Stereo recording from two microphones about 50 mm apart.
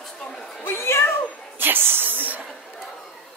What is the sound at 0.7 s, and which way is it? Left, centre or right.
Speech, left.